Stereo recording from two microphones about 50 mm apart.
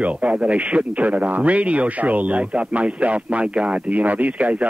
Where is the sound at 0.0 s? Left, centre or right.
Right.